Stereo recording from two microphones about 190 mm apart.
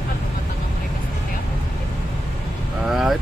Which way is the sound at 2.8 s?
Centre (ahead or behind).